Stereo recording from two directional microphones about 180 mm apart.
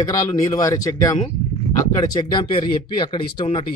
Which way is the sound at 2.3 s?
30° left (ahead or behind).